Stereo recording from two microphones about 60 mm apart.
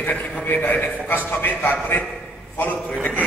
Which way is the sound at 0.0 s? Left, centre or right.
Left.